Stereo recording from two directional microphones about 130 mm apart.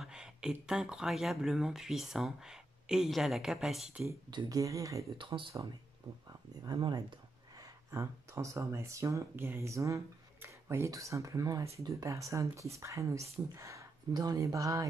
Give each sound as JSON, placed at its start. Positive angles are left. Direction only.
{"t": 0.0, "sound": "speech", "side_deg": -5}
{"t": 4.3, "sound": "speech", "side_deg": -30}
{"t": 5.1, "sound": "speech", "side_deg": -40}